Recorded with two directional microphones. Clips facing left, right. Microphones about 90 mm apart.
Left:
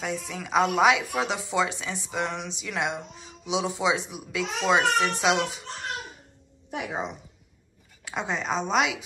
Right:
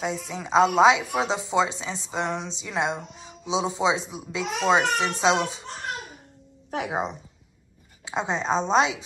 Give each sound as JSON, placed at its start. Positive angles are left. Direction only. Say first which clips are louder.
{"t": 0.0, "sound": "a woman's voice", "louder": "right 2 dB", "side_deg": -20}
{"t": 8.0, "sound": "a woman's voice", "louder": "right 3 dB", "side_deg": -25}